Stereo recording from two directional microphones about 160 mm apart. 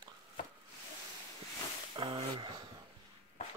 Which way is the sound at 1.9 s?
30° right (ahead or behind).